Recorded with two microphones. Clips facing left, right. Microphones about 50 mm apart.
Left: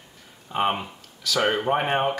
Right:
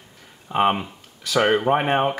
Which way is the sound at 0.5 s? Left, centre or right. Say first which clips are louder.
Right 4 dB; centre.